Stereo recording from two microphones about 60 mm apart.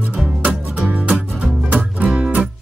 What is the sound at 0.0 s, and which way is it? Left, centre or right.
Music, centre.